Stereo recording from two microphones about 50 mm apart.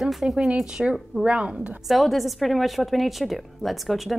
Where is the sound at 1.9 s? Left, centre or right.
Centre.